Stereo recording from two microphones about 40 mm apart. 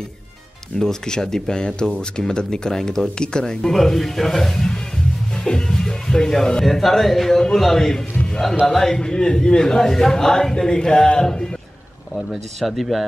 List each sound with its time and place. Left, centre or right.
0.7 s speech: centre
3.7 s speech: centre
12.5 s speech: centre